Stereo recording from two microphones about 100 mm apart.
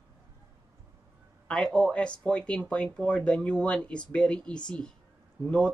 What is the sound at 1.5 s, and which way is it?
Speech, 10° left (ahead or behind).